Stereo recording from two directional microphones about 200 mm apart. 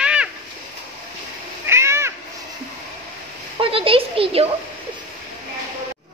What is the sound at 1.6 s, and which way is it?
Cat, 15° right (ahead or behind).